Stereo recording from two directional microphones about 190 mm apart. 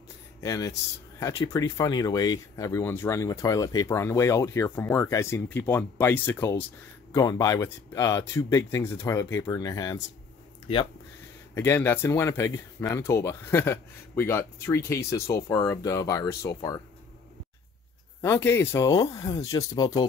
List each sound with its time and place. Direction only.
0.4 s speech: 15° left (ahead or behind)
11.5 s speech: 15° left (ahead or behind)
18.2 s speech: 15° left (ahead or behind)